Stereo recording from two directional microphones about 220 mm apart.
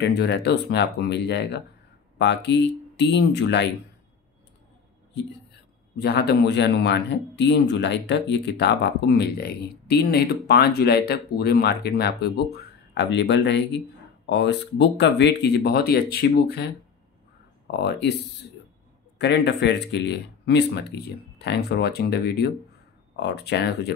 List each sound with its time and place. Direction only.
0.0 s a man's voice: 50° left (ahead or behind)
5.9 s a man's voice: 50° left (ahead or behind)
17.6 s speech: 50° left (ahead or behind)
19.1 s a man's voice: 55° left (ahead or behind)